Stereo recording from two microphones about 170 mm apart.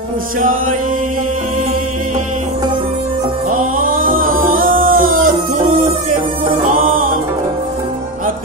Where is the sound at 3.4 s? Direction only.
55° right (ahead or behind).